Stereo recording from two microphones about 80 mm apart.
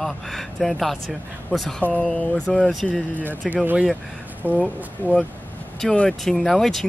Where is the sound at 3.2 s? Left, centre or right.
Right.